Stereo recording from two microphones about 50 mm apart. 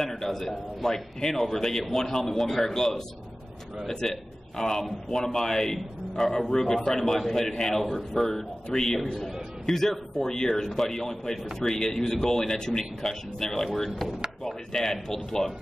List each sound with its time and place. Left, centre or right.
0.0 s a man's voice: centre